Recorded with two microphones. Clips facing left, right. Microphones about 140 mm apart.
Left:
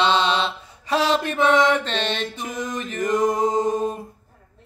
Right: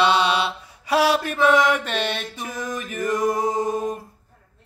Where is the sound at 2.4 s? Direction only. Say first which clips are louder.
Left 2 dB; 20° left (ahead or behind).